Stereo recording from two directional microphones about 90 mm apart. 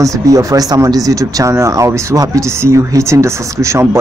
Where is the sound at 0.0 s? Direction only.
40° right (ahead or behind).